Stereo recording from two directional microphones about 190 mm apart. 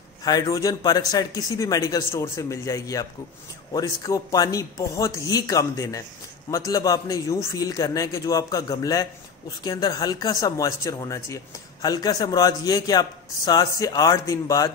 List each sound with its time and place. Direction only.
0.2 s a man's voice: 20° left (ahead or behind)